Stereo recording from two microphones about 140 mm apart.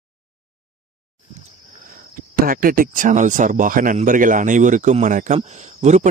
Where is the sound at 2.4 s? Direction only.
85° right.